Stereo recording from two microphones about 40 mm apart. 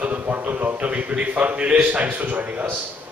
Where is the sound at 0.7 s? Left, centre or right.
Right.